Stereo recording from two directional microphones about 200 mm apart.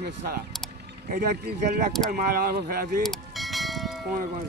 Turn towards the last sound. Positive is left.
turn(degrees=0)  # may be behind; listen again after turning